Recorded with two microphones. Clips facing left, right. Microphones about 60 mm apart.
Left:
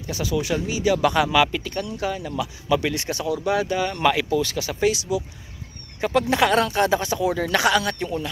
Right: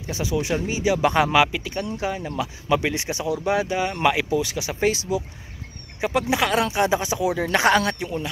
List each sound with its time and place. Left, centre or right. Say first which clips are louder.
0.0 s speech: even; right
1.4 s speech: even; centre
4.7 s speech: even; right
5.9 s speech: left 2 dB; centre
7.4 s speech: right 3 dB; right
8.0 s speech: left 1 dB; centre